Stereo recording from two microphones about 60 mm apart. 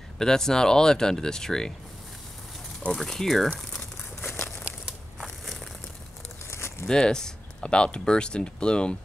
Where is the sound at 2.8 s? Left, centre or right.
Centre.